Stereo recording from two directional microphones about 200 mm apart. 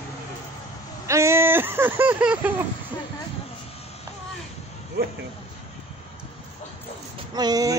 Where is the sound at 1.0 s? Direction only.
15° right (ahead or behind).